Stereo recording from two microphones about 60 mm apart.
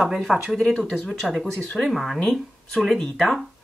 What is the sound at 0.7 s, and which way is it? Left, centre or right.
Speech, centre.